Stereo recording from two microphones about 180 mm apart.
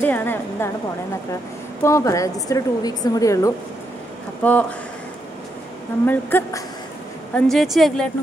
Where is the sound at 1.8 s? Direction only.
15° left (ahead or behind).